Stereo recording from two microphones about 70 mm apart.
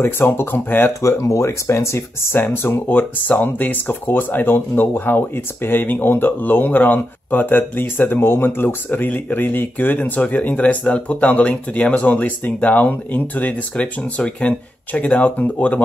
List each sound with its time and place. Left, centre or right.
0.0 s speech: left
1.0 s speech: left